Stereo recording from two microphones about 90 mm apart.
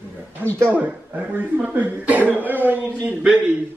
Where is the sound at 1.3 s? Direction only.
20° right (ahead or behind).